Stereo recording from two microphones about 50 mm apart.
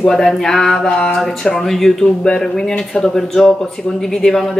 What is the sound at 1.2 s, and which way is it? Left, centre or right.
Speech, centre.